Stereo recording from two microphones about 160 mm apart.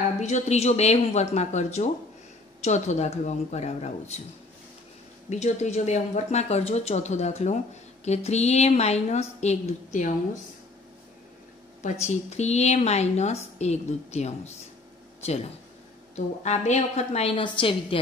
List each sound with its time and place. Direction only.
0.2 s speech: 45° left (ahead or behind)
5.3 s speech: 45° left (ahead or behind)
11.8 s a woman's voice: 45° left (ahead or behind)